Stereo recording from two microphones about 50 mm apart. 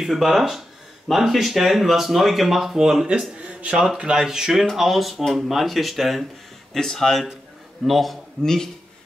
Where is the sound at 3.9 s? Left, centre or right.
Centre.